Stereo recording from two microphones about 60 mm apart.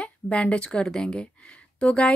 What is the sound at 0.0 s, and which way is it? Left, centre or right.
Speech, centre.